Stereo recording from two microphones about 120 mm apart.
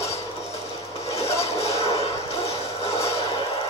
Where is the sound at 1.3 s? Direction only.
60° left (ahead or behind).